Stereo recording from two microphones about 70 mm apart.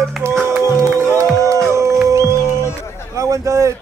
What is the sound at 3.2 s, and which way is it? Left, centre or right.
Speech, right.